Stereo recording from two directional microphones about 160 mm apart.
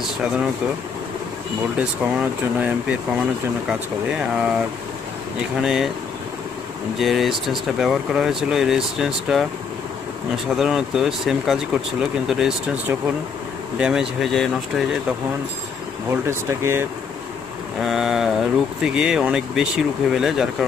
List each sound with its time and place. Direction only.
1.8 s speech: 10° right (ahead or behind)
4.1 s speech: 5° right (ahead or behind)
5.6 s speech: 5° right (ahead or behind)
7.0 s speech: centre (ahead or behind)
13.7 s speech: 5° right (ahead or behind)
16.1 s speech: 15° right (ahead or behind)
17.7 s speech: centre (ahead or behind)